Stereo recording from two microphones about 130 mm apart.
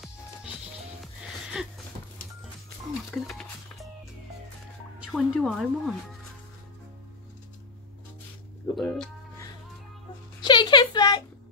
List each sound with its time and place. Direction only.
1.0 s music: 5° right (ahead or behind)
3.1 s speech: centre (ahead or behind)
5.0 s speech: centre (ahead or behind)
8.7 s music: 5° left (ahead or behind)
10.4 s a sound: 35° left (ahead or behind)